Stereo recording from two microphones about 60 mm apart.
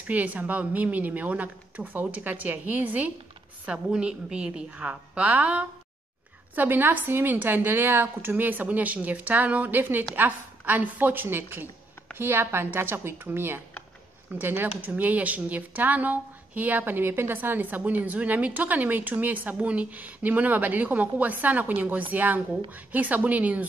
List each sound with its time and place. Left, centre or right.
0.0 s speech: right
3.6 s a woman's voice: centre